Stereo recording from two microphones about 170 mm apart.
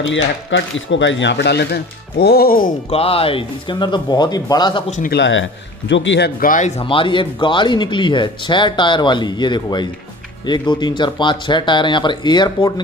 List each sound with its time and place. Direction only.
0.1 s speech: 90° left; by 2.7 s 60° left (ahead or behind)
2.9 s speech: 35° left (ahead or behind)
5.1 s a man's voice: 90° left
6.4 s speech: 50° left (ahead or behind)
6.8 s speech: 30° left (ahead or behind)